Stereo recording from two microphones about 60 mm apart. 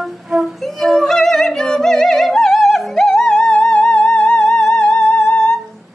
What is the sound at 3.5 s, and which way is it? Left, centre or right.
Music, centre.